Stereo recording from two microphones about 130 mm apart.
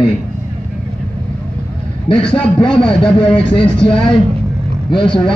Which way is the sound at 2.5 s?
40° left (ahead or behind).